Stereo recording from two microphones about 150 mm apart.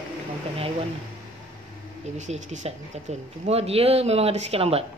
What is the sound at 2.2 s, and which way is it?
Speech, 50° right (ahead or behind).